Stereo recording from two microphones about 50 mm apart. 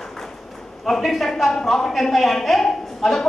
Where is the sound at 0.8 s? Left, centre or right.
Centre.